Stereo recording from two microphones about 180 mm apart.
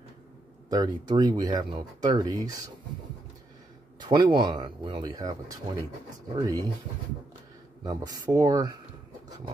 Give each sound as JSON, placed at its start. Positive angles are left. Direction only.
{"t": 0.7, "sound": "speech", "side_deg": -20}
{"t": 4.0, "sound": "speech", "side_deg": -25}
{"t": 7.8, "sound": "speech", "side_deg": -20}